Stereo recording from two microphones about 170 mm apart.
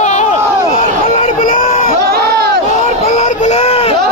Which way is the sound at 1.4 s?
50° left (ahead or behind).